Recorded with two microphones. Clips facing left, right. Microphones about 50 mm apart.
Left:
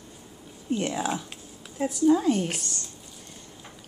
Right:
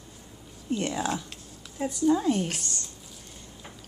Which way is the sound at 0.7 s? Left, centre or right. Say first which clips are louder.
Left 1 dB; centre.